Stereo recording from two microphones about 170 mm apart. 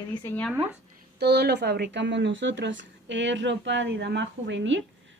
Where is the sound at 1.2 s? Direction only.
75° right (ahead or behind).